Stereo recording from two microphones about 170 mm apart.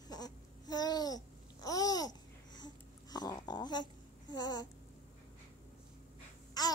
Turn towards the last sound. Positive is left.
turn(degrees=25)  # may be behind; listen again after turning